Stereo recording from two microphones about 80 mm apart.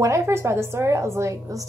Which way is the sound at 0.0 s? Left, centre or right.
Right.